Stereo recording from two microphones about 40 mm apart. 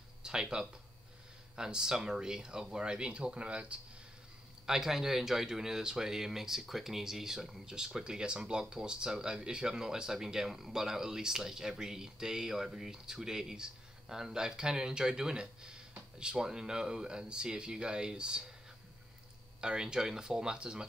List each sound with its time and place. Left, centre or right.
0.2 s speech: centre
4.6 s speech: centre
19.6 s speech: right